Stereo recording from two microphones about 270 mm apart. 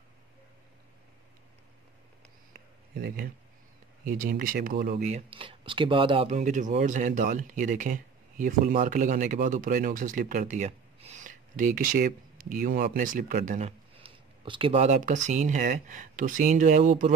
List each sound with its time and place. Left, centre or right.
3.0 s speech: right